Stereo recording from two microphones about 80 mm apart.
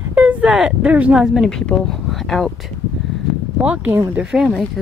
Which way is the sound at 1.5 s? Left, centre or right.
Centre.